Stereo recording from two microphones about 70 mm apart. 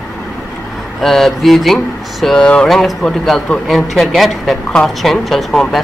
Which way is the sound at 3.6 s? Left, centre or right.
Centre.